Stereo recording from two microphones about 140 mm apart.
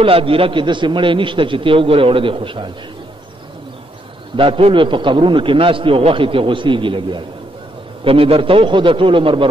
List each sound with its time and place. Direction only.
0.0 s a man's voice: 40° right (ahead or behind)
4.4 s a man's voice: 40° right (ahead or behind)